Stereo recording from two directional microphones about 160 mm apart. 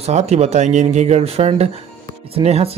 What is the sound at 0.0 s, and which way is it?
Speech, 45° right (ahead or behind).